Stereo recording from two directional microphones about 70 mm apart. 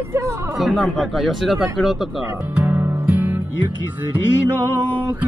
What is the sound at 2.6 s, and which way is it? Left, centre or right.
Music, right.